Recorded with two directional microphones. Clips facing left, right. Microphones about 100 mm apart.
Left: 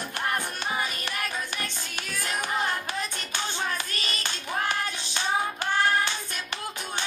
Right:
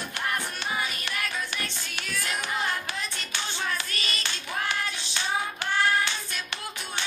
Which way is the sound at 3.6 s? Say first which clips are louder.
Left 1 dB; 40° left (ahead or behind).